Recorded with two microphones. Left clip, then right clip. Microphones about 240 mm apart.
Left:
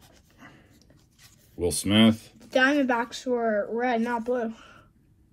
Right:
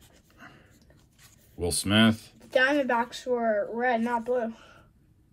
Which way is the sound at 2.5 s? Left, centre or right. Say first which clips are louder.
Left 1 dB; left.